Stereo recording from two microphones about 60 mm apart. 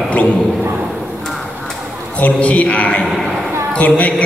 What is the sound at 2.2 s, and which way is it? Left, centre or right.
A man's voice, left.